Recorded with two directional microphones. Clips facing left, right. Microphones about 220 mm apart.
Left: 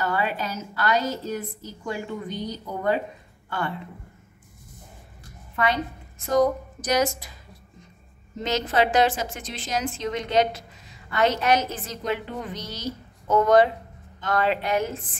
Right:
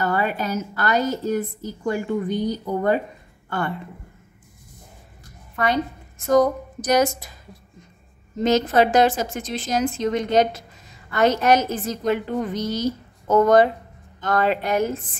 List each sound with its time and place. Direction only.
0.0 s a woman's voice: 50° right (ahead or behind)
6.3 s a woman's voice: 45° right (ahead or behind)
8.4 s a woman's voice: 45° right (ahead or behind)